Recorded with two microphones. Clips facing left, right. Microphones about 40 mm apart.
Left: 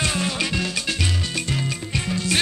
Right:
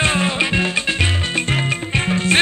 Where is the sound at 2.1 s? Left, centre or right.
Right.